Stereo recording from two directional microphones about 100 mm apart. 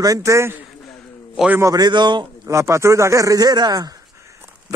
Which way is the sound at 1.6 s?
40° right (ahead or behind).